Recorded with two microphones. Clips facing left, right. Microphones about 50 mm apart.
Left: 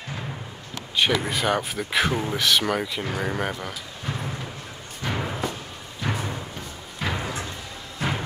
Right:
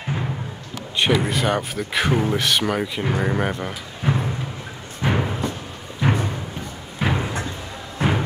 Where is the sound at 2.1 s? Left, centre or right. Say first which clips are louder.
Right 3 dB; centre.